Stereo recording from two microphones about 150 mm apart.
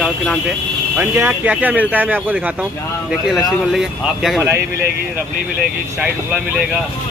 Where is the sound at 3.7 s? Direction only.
Centre (ahead or behind).